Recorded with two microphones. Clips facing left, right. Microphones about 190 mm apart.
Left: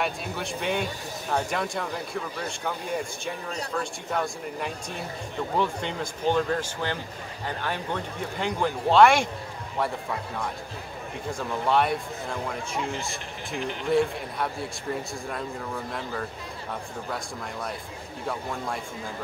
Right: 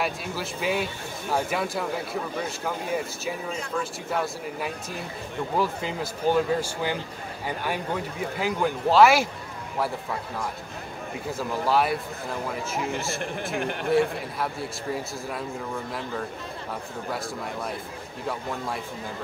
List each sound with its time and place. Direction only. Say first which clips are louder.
0.0 s a man's voice: right 1 dB; centre (ahead or behind)
11.2 s a man's voice: right 1 dB; 5° right (ahead or behind)
13.6 s speech: right 1 dB; 55° right (ahead or behind)
13.9 s a man's voice: even; centre (ahead or behind)